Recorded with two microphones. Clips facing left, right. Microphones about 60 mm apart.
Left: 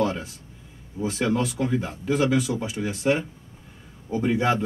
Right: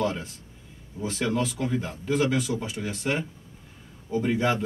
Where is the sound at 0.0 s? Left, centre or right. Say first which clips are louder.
Left 3 dB; centre.